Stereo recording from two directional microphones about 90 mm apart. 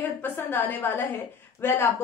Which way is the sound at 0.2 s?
20° left (ahead or behind).